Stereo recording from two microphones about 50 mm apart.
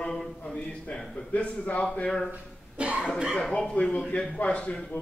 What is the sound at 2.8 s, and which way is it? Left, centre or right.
Speech, right.